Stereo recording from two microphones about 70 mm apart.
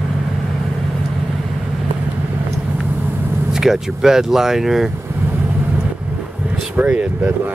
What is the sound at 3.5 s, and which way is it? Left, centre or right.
Speech, centre.